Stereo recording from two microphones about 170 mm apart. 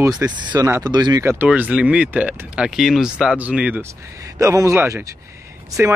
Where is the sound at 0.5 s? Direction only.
20° right (ahead or behind).